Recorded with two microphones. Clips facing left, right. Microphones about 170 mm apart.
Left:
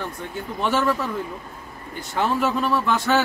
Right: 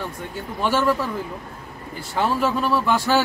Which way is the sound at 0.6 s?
5° right (ahead or behind).